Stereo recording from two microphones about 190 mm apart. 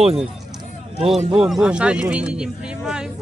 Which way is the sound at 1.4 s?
Centre (ahead or behind).